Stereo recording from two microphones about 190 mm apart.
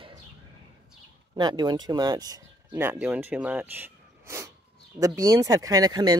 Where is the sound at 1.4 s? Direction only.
20° right (ahead or behind).